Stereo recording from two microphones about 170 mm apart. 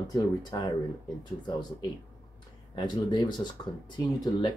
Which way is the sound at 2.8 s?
25° left (ahead or behind).